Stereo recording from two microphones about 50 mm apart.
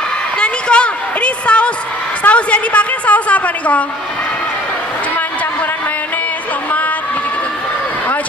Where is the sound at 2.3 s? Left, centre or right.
Left.